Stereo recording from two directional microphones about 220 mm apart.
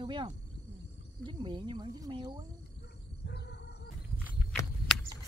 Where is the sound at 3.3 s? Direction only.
50° left (ahead or behind).